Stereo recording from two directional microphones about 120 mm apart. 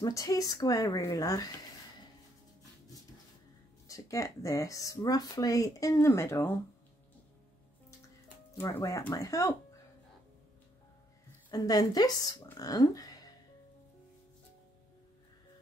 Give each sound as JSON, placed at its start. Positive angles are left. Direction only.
{"t": 0.0, "sound": "speech", "side_deg": 30}
{"t": 3.8, "sound": "speech", "side_deg": 30}
{"t": 8.7, "sound": "speech", "side_deg": 25}
{"t": 11.5, "sound": "speech", "side_deg": 30}
{"t": 12.5, "sound": "a sound", "side_deg": 30}